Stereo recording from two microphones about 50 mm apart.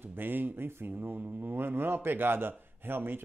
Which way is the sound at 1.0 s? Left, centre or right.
Right.